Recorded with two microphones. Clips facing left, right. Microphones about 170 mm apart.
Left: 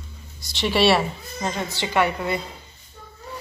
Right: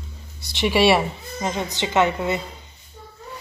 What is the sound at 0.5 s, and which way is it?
Speech, 10° right (ahead or behind).